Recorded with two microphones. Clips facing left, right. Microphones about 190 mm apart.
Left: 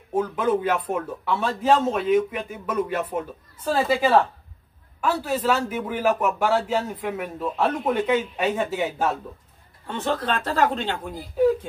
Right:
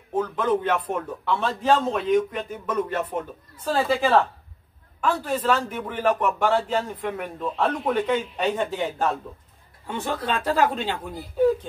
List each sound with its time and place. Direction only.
0.1 s speech: 10° left (ahead or behind)
9.8 s speech: 10° right (ahead or behind)